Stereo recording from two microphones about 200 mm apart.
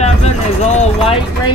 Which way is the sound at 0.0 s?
35° left (ahead or behind).